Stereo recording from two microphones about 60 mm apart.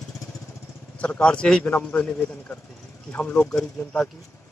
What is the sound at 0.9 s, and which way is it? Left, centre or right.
A man's voice, centre.